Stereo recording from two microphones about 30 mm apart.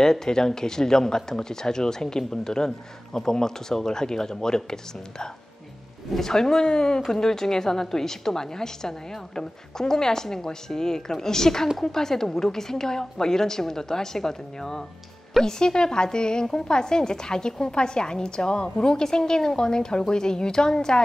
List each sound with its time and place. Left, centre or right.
0.0 s speech: centre
6.1 s a woman's voice: centre